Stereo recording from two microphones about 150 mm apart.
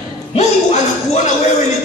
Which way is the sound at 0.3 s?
50° left (ahead or behind).